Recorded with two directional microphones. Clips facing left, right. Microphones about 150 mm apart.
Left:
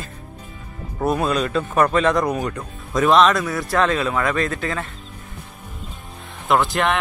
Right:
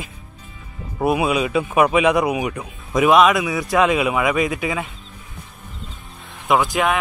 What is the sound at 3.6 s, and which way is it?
A man's voice, 15° right (ahead or behind).